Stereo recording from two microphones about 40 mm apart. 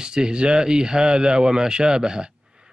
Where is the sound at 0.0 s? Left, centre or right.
Right.